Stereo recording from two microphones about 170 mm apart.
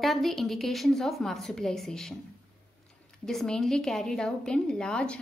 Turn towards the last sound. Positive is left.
turn(degrees=5)  # may be behind; listen again after turning